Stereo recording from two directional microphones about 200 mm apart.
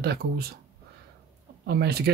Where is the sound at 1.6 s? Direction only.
55° right (ahead or behind).